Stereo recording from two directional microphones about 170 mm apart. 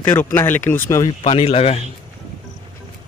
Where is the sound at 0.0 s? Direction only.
10° left (ahead or behind).